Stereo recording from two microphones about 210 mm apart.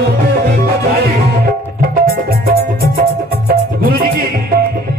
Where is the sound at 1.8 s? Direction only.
45° right (ahead or behind).